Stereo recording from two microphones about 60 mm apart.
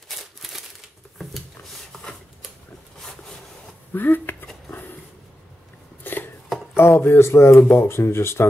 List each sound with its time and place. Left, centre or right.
0.4 s crumpling: centre
3.9 s speech: left
6.0 s chopping: left
6.8 s speech: left